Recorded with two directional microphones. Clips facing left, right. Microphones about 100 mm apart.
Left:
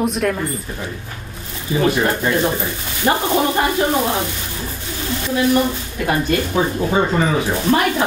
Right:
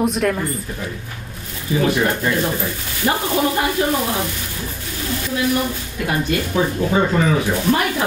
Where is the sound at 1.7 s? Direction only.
25° left (ahead or behind).